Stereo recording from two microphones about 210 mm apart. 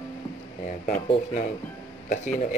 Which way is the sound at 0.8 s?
40° left (ahead or behind).